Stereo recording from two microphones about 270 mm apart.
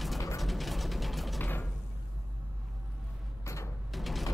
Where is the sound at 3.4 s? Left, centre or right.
Centre.